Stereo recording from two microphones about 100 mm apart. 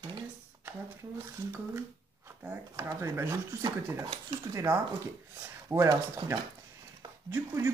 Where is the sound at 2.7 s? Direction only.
30° right (ahead or behind).